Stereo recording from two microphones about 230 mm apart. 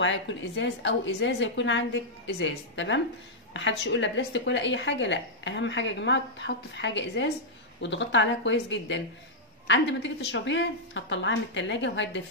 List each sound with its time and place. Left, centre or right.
0.0 s a woman's voice: left